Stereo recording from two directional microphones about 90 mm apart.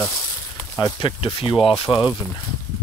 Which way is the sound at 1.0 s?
85° left.